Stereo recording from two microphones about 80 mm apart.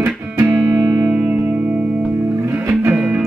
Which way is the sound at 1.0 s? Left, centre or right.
Centre.